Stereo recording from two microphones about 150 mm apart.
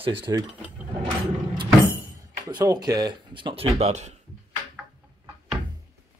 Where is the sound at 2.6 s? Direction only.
25° right (ahead or behind); by 4.2 s 50° right (ahead or behind).